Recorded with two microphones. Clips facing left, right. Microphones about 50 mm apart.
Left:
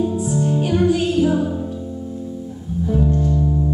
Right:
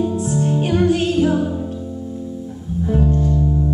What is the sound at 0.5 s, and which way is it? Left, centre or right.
Music, right.